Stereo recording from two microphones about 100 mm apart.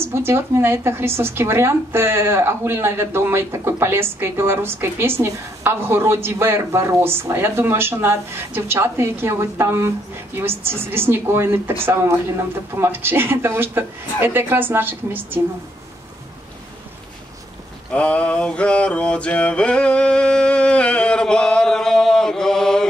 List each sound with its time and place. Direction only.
0.0 s a woman's voice: 25° right (ahead or behind)
17.9 s mantra: 15° left (ahead or behind)